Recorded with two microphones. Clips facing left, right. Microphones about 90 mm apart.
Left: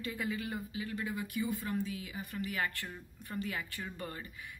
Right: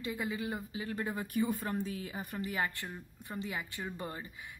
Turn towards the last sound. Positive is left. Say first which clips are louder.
# right 2 dB
turn(degrees=-20)  # may be behind; listen again after turning